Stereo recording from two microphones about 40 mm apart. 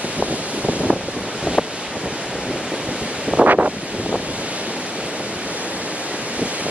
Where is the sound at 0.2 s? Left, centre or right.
Right.